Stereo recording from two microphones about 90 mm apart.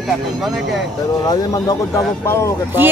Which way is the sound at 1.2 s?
45° left (ahead or behind).